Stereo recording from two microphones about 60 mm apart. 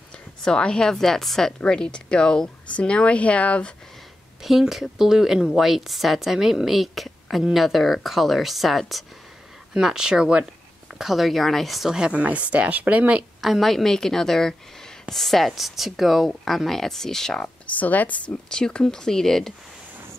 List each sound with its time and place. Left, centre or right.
0.4 s speech: centre
4.4 s a woman's voice: centre
12.1 s speech: right
13.4 s a woman's voice: centre
17.7 s speech: left; by 19.5 s centre